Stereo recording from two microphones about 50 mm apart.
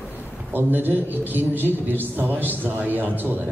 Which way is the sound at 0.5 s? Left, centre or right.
Right.